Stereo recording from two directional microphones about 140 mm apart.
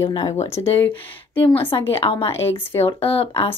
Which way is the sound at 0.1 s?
30° left (ahead or behind).